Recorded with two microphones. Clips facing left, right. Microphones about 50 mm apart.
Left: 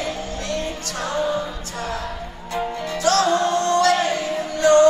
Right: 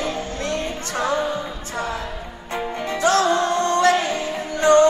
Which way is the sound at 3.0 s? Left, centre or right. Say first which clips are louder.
Right 1 dB; right.